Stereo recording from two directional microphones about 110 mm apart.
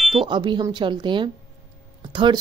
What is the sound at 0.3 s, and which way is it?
A woman's voice, 45° right (ahead or behind).